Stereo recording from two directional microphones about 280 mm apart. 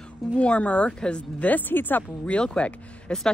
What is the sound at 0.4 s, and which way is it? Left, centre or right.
Speech, centre.